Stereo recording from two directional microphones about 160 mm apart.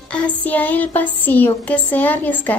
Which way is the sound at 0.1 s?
10° left (ahead or behind).